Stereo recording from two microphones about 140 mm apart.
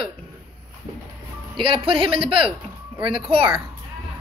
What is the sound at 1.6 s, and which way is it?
A woman's voice, 40° right (ahead or behind).